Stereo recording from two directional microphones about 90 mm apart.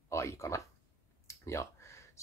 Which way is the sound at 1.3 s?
35° left (ahead or behind).